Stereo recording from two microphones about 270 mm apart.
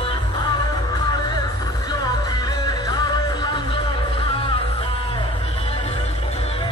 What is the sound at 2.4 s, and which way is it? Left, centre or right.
Music, centre.